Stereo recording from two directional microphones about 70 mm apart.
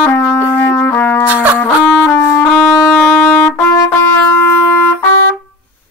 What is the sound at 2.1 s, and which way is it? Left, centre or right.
Wind instrument, left.